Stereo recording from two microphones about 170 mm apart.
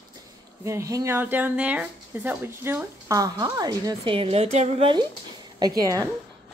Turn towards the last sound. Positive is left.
turn(degrees=-20)  # may be behind; listen again after turning